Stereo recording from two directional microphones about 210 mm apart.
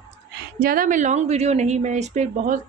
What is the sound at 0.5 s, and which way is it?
A woman's voice, 45° right (ahead or behind).